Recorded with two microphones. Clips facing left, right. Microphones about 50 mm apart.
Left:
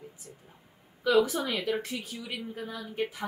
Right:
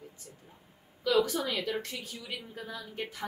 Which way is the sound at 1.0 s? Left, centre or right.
Centre.